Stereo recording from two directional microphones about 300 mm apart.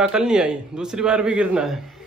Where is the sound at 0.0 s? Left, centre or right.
Centre.